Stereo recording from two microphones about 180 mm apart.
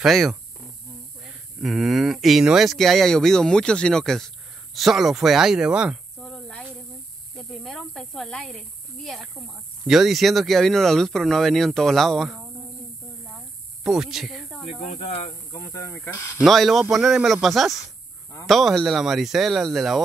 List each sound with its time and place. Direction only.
0.0 s speech: centre (ahead or behind)
1.6 s speech: centre (ahead or behind)
13.8 s speech: centre (ahead or behind)
14.8 s speech: 40° left (ahead or behind)
15.5 s speech: 15° left (ahead or behind)
16.4 s speech: centre (ahead or behind)